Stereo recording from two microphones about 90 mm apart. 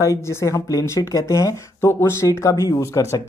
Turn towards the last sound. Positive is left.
turn(degrees=35)  # may be behind; listen again after turning